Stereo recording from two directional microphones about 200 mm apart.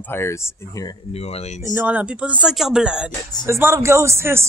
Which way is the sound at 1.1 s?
30° left (ahead or behind).